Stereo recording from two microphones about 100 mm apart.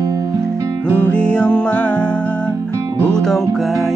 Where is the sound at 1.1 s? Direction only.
10° left (ahead or behind).